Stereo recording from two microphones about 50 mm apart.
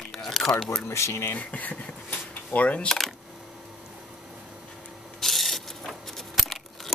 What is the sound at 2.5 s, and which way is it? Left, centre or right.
Coin, left.